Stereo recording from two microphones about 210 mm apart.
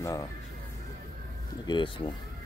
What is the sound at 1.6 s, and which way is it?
Speech, 25° left (ahead or behind).